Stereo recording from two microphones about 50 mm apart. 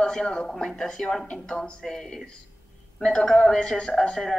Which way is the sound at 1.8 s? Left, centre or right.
Centre.